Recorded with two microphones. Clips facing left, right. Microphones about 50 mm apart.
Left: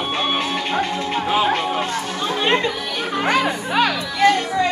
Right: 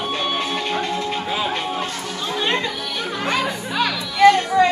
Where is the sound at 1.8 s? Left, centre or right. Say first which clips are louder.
Left 3 dB; left.